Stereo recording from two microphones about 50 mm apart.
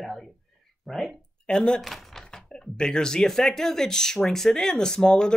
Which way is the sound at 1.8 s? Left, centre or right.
Centre.